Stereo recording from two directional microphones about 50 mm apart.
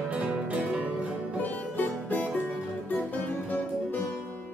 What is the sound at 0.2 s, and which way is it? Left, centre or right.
Music, right.